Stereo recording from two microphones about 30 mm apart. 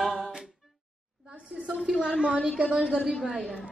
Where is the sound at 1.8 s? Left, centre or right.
Right.